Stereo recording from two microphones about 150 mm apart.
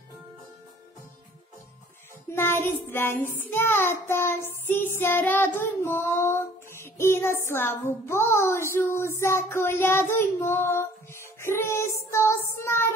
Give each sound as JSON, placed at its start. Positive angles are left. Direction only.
{"t": 2.3, "sound": "child singing", "side_deg": 15}